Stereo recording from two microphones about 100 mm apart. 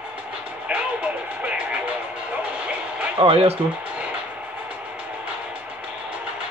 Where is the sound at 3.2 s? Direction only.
70° right (ahead or behind).